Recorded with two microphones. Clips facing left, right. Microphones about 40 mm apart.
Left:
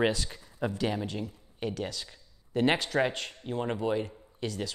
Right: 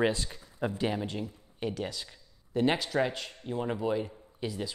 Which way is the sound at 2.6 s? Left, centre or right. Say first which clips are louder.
Left 1 dB; left.